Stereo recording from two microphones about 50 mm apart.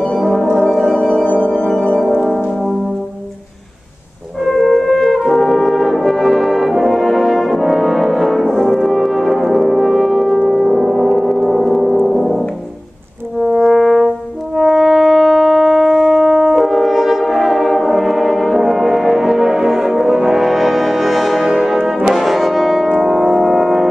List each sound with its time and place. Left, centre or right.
0.2 s music: centre
0.6 s organ: centre
0.9 s singing bowl: centre
1.2 s music: left
4.5 s brass instrument: centre
12.1 s music: centre
13.4 s french horn: centre
22.0 s brass instrument: centre
22.8 s music: centre